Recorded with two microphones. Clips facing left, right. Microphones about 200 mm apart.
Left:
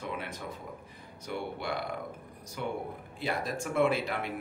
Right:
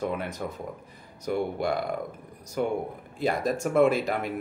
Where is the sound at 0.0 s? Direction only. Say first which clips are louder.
Right 8 dB; 45° right (ahead or behind).